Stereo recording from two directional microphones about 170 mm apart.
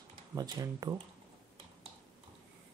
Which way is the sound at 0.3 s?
20° right (ahead or behind).